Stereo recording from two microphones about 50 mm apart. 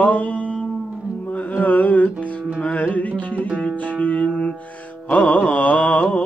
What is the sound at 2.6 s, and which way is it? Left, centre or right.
Music, left.